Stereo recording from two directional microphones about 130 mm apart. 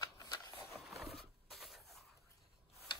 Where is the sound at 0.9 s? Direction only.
Centre (ahead or behind).